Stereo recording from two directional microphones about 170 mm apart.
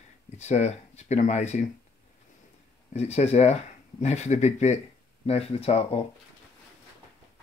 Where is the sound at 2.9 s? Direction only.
40° left (ahead or behind).